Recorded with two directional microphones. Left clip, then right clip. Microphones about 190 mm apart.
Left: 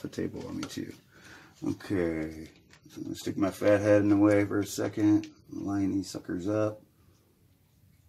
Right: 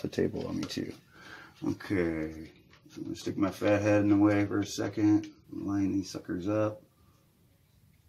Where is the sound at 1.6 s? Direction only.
5° right (ahead or behind).